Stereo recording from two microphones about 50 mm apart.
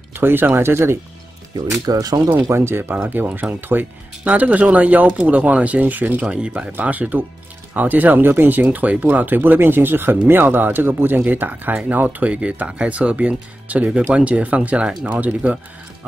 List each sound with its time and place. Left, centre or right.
0.1 s speech: right
0.6 s speech: right
2.5 s speech: right
3.1 s speech: right
4.2 s speech: right
6.2 s speech: right
12.4 s speech: right